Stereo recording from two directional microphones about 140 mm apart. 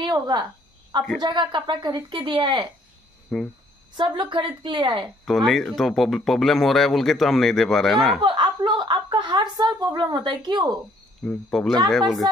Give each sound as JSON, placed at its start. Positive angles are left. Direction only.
{"t": 0.0, "sound": "a woman's voice", "side_deg": -30}
{"t": 3.3, "sound": "speech", "side_deg": 5}
{"t": 3.9, "sound": "a woman's voice", "side_deg": -35}
{"t": 5.2, "sound": "speech", "side_deg": 0}
{"t": 8.2, "sound": "a woman's voice", "side_deg": -35}
{"t": 11.2, "sound": "speech", "side_deg": 0}